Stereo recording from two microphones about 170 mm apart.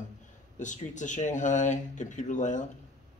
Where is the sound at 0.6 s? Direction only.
45° left (ahead or behind).